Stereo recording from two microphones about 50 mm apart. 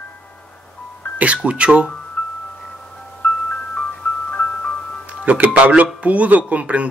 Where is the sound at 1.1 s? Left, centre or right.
Right.